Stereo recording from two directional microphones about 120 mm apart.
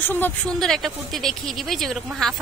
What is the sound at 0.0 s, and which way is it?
Speech, 15° left (ahead or behind).